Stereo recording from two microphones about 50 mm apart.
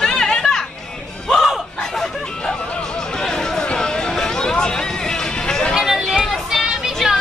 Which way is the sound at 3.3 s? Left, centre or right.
Centre.